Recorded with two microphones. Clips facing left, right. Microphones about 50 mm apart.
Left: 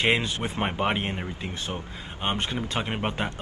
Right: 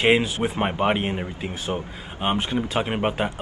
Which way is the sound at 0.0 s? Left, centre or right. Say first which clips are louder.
Right 5 dB; centre.